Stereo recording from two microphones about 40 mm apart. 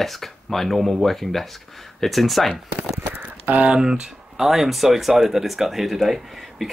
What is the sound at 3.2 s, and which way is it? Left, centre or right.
Typing, right.